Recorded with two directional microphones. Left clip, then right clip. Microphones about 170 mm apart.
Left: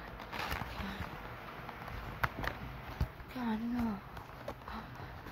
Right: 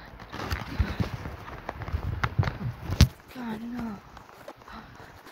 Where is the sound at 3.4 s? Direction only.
15° right (ahead or behind).